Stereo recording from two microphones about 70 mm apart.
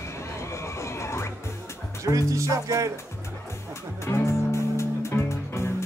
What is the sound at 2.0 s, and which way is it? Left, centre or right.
Speech, right.